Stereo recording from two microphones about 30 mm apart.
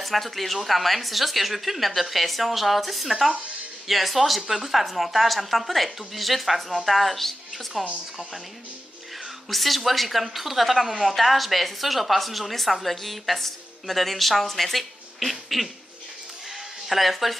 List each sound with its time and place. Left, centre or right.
0.0 s a woman's voice: centre
7.8 s speech: right
9.5 s a woman's voice: centre
16.8 s a woman's voice: centre